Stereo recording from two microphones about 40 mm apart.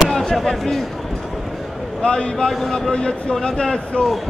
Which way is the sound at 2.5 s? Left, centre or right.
Centre.